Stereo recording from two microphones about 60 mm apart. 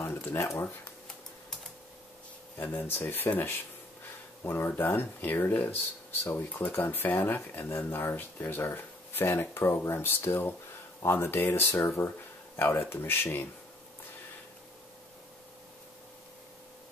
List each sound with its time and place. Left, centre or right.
0.0 s a sound: left
2.5 s speech: left
12.5 s speech: left